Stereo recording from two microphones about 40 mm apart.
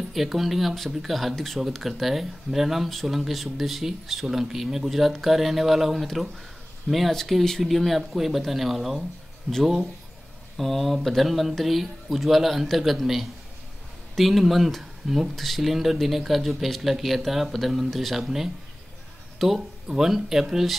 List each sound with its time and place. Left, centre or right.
0.1 s speech: centre
10.6 s speech: centre
19.3 s a sound: centre
20.0 s speech: centre